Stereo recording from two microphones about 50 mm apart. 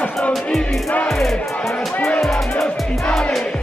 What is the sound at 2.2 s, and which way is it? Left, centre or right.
Music, centre.